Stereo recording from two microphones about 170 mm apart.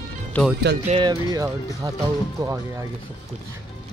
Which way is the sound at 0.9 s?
25° right (ahead or behind).